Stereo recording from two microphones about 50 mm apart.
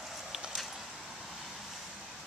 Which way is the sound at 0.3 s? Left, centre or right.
Centre.